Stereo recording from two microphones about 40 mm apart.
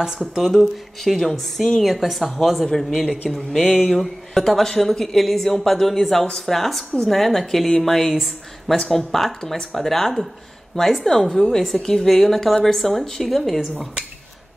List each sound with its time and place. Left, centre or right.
0.6 s a woman's voice: centre
8.7 s speech: centre
13.6 s speech: centre